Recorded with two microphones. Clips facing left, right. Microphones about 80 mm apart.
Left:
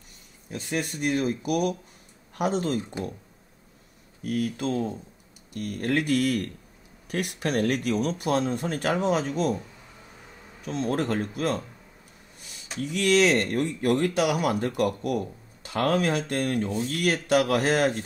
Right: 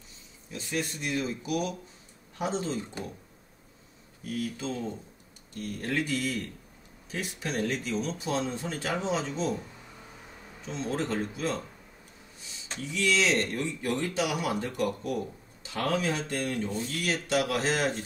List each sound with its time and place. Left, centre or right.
0.5 s speech: left
4.2 s speech: left
10.6 s speech: left
12.4 s a sound: left
12.8 s speech: left